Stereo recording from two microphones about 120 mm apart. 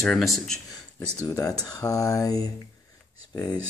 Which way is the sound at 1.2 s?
25° left (ahead or behind).